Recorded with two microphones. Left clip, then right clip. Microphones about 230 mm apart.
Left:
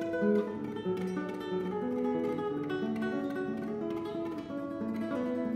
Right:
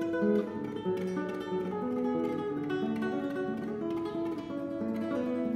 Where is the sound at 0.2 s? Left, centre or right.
Left.